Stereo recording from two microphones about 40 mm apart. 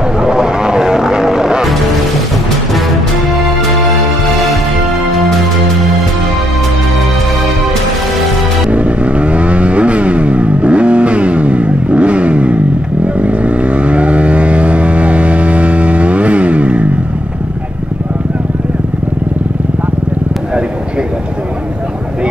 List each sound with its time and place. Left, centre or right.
0.2 s vehicle: centre
8.6 s vehicle: right